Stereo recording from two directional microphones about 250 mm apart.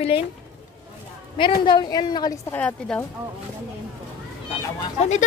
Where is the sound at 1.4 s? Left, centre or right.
Centre.